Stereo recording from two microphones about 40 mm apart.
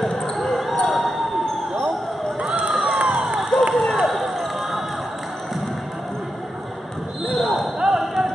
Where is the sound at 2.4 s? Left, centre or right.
Right.